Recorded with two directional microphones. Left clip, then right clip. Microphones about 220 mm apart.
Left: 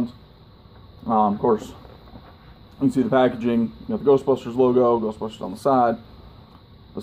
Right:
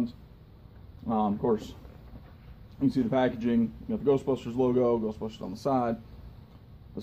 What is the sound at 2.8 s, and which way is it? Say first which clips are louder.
Speech: left 8 dB; 20° left (ahead or behind).